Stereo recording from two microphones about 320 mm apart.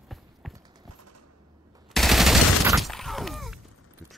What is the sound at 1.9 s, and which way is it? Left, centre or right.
Fusillade, centre.